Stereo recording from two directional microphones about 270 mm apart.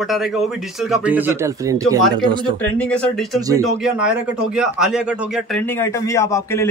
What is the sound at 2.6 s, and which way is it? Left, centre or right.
A man's voice, centre.